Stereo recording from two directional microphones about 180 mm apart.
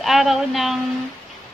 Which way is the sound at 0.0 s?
Centre (ahead or behind).